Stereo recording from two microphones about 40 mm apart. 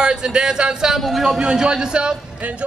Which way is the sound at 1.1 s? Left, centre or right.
Centre.